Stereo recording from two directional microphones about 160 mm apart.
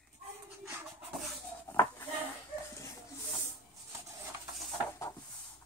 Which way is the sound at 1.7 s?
10° left (ahead or behind).